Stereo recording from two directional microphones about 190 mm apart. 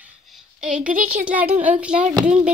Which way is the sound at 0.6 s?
5° right (ahead or behind).